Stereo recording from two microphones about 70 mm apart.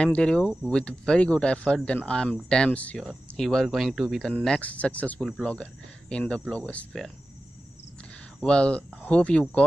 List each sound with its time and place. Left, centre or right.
0.0 s speech: centre
3.0 s speech: centre
4.5 s speech: left
8.4 s speech: centre